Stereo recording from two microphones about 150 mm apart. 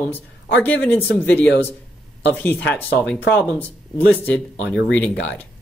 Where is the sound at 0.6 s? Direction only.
10° left (ahead or behind).